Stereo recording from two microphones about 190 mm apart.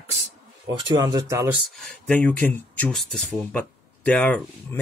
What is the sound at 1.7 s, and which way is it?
Speech, centre (ahead or behind).